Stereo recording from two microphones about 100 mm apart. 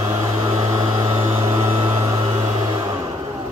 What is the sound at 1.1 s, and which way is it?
Vehicle, 25° right (ahead or behind).